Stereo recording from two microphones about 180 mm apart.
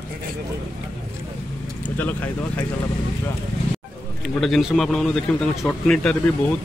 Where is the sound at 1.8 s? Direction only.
10° left (ahead or behind).